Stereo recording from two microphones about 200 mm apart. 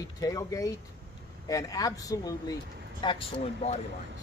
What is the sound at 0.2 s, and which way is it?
Speech, 15° left (ahead or behind).